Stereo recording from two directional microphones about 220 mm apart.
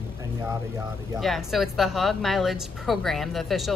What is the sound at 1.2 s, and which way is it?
A woman's voice, centre (ahead or behind).